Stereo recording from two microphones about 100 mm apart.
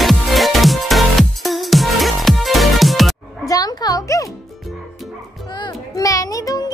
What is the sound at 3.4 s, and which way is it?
Music, 40° left (ahead or behind).